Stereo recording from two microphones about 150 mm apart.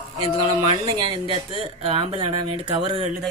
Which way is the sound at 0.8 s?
30° right (ahead or behind).